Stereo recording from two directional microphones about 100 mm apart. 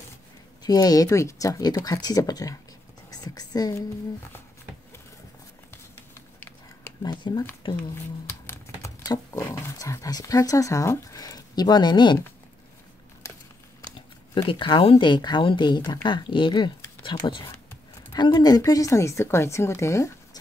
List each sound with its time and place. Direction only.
0.6 s speech: 40° left (ahead or behind)
7.0 s speech: 40° left (ahead or behind)
7.6 s speech: 60° left (ahead or behind)
8.5 s speech: 35° left (ahead or behind); by 12.2 s 50° left (ahead or behind)
14.3 s speech: 55° left (ahead or behind)
18.6 s a woman's voice: 30° left (ahead or behind)